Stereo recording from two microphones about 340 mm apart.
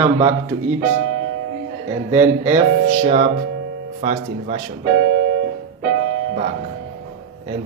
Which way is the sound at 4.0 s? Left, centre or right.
Centre.